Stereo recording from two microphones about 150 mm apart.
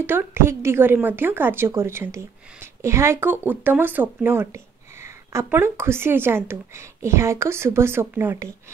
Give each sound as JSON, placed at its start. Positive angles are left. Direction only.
{"t": 0.0, "sound": "a woman's voice", "side_deg": -15}